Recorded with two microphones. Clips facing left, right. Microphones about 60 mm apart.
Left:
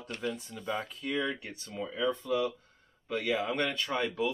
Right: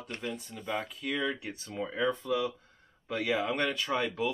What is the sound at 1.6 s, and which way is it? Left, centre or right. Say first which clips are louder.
Speech: right 1 dB; centre.